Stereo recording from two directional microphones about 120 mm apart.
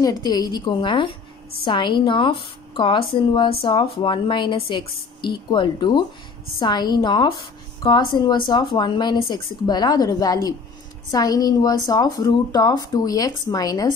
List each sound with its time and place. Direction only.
0.0 s a woman's voice: 35° left (ahead or behind)